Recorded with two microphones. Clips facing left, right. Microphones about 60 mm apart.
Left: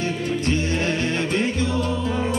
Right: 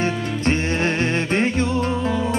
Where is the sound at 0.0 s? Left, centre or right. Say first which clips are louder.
Right 2 dB; right.